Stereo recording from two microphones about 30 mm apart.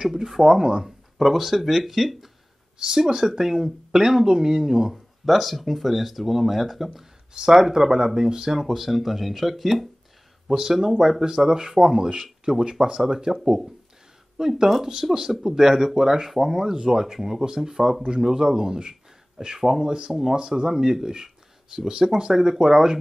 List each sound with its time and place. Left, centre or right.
0.1 s speech: centre
0.8 s speech: centre
2.8 s speech: centre
4.8 s speech: centre
10.5 s speech: right
15.0 s speech: centre